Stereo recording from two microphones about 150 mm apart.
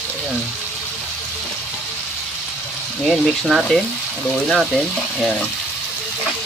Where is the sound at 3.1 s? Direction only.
Centre (ahead or behind).